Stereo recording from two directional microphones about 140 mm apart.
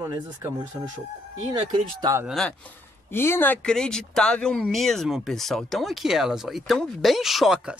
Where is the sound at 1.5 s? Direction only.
30° right (ahead or behind).